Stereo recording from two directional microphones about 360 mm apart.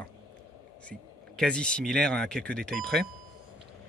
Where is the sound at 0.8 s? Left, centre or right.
Centre.